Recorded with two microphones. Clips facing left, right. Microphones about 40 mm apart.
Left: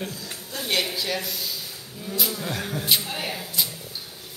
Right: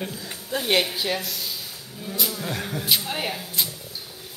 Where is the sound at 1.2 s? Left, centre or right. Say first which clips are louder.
Even; centre.